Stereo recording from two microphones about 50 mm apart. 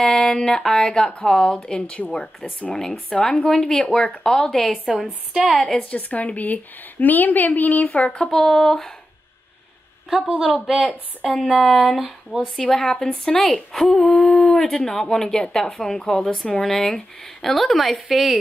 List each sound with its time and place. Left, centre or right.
0.0 s speech: centre
2.6 s speech: centre
5.8 s a woman's voice: left
8.3 s speech: centre
10.2 s a woman's voice: centre
12.5 s speech: centre